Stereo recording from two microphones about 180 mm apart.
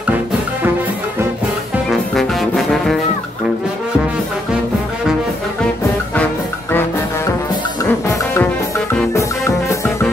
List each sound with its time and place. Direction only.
1.9 s music: centre (ahead or behind)
7.8 s music: 20° left (ahead or behind)